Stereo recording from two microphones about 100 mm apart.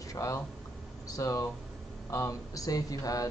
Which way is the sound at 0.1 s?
30° left (ahead or behind).